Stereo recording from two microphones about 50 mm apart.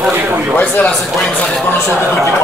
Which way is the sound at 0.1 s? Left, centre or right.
Right.